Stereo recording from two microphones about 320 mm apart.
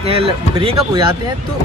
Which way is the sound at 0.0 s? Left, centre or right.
Centre.